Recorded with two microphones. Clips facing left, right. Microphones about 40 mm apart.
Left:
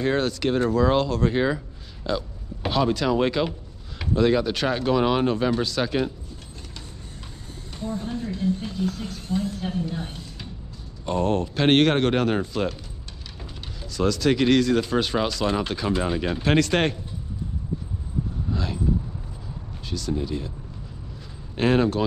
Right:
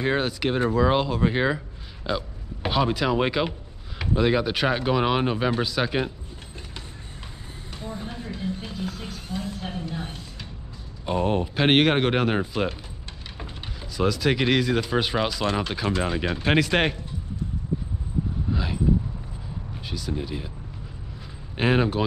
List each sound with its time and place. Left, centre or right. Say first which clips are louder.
0.0 s speech: left 1 dB; centre
7.8 s a sound: left 6 dB; centre
11.1 s speech: left 1 dB; centre
13.9 s speech: left 2 dB; centre
18.5 s a sound: even; centre
19.9 s speech: left 3 dB; centre
21.5 s speech: left 2 dB; centre